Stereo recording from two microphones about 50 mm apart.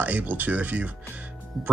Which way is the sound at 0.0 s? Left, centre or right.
Right.